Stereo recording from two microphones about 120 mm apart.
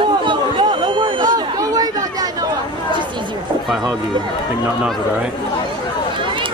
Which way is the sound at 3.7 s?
Centre (ahead or behind).